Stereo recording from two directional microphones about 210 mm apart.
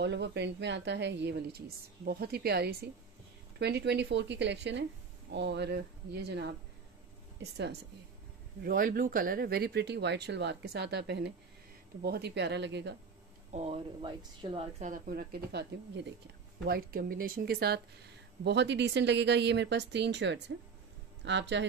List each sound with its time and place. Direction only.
0.0 s speech: 55° right (ahead or behind)
8.6 s speech: 45° right (ahead or behind)
13.5 s speech: 30° right (ahead or behind)
14.9 s speech: 45° right (ahead or behind)